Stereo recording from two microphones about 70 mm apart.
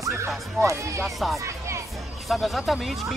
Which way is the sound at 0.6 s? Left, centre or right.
Right.